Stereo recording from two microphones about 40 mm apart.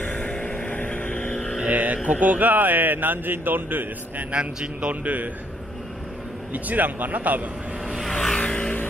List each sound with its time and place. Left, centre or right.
0.0 s vehicle: left
1.6 s a sound: right
2.0 s a man's voice: right
4.3 s a man's voice: right
5.0 s a man's voice: right
6.5 s a man's voice: right
8.1 s vehicle: centre
8.4 s vehicle: left